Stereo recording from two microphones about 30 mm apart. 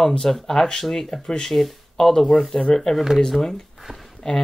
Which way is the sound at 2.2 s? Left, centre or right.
Centre.